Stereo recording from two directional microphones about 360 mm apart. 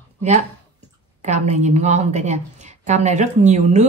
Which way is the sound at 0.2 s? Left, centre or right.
Centre.